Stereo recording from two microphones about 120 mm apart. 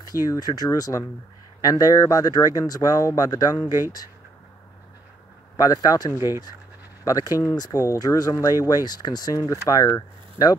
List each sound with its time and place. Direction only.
0.0 s speech: 30° left (ahead or behind)
5.6 s speech: 30° left (ahead or behind)